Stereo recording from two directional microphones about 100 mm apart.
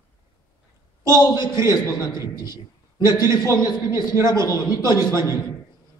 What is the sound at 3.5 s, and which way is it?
Speech, 45° left (ahead or behind).